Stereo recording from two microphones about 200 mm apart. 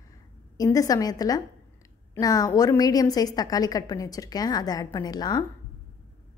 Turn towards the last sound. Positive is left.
turn(degrees=20)  # may be behind; listen again after turning